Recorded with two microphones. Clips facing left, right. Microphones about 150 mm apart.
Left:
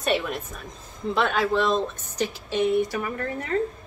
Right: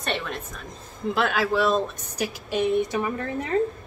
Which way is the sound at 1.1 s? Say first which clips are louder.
Left 1 dB; 5° right (ahead or behind).